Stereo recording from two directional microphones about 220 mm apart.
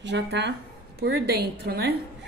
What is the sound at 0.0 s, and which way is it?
A woman's voice, 50° right (ahead or behind).